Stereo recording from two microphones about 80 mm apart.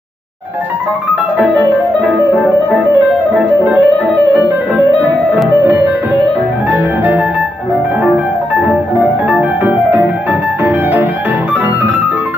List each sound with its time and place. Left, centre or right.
3.3 s music: centre
6.7 s music: right
9.3 s music: centre